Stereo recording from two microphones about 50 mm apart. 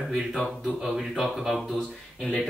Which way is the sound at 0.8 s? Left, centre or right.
Centre.